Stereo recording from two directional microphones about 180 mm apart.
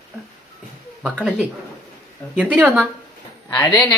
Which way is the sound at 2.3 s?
10° right (ahead or behind).